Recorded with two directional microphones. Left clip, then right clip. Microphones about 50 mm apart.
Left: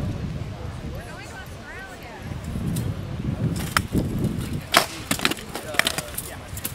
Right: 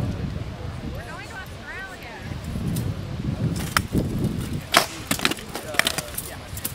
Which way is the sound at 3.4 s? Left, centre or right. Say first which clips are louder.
Even; centre.